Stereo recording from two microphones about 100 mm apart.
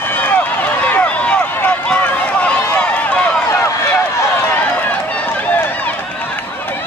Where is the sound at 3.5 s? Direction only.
30° left (ahead or behind).